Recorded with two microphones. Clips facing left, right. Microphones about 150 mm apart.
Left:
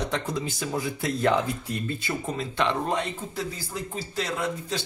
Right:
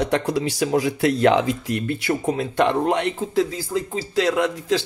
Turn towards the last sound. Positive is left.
turn(degrees=-90)